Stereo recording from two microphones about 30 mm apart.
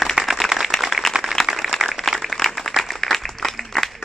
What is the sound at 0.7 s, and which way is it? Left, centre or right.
Applause, centre.